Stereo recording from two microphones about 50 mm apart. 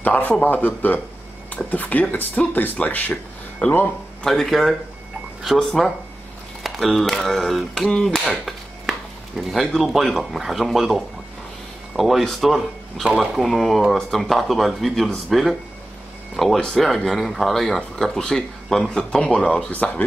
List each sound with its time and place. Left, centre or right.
0.0 s speech: left
4.2 s speech: centre
9.4 s speech: centre
16.5 s speech: centre
16.8 s speech: centre
19.7 s speech: left